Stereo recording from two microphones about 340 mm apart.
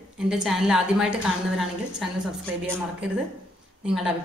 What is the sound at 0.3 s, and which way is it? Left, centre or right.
A woman's voice, centre.